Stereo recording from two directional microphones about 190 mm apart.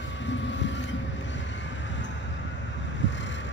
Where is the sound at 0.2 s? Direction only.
70° left (ahead or behind).